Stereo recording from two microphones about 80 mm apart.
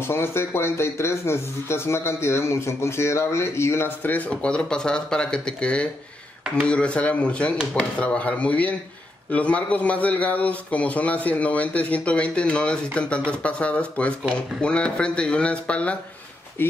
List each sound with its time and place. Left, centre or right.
0.0 s speech: left
4.3 s a man's voice: centre